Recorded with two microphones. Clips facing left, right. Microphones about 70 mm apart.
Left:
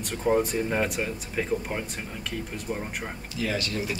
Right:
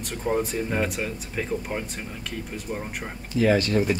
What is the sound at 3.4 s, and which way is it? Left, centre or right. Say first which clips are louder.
Speech: right 9 dB; right.